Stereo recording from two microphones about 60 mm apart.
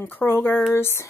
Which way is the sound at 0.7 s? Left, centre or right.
Left.